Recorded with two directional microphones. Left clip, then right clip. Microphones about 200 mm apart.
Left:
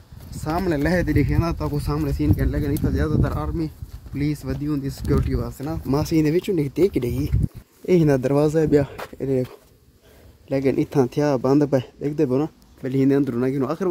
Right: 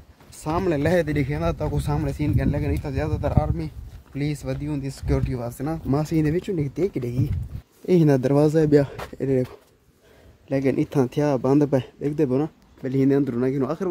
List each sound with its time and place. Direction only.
0.3 s speech: 10° right (ahead or behind)
7.8 s speech: 10° right (ahead or behind)
8.3 s speech: 25° right (ahead or behind)
9.3 s speech: 5° right (ahead or behind)